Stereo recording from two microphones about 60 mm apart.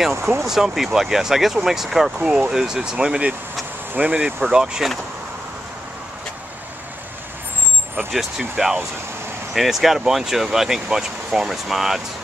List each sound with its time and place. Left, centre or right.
0.1 s speech: right
0.5 s speech: centre
8.1 s speech: centre